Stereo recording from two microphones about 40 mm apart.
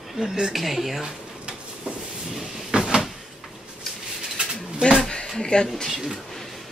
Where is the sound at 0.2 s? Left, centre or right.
Centre.